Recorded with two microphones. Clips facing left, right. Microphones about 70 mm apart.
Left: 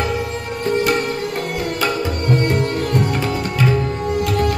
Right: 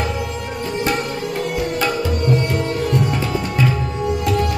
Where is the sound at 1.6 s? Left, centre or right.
Left.